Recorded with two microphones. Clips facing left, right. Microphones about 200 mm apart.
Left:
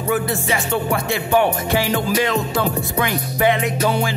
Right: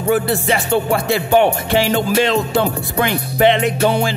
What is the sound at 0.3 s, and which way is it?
Music, 30° right (ahead or behind).